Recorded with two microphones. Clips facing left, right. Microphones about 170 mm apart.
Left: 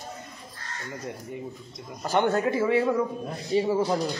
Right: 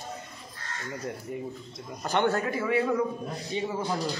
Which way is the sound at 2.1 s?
15° left (ahead or behind).